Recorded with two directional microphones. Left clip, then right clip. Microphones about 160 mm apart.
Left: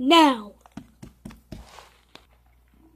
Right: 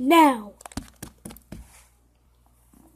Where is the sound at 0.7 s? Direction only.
65° right (ahead or behind).